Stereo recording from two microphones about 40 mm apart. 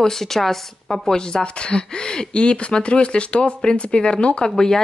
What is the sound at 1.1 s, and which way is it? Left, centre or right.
Speech, centre.